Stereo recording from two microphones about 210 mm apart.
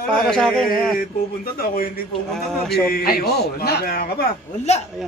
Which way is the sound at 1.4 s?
45° left (ahead or behind).